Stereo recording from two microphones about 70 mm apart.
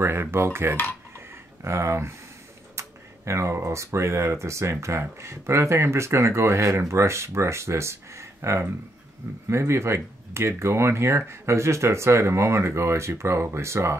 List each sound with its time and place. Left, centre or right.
0.0 s speech: right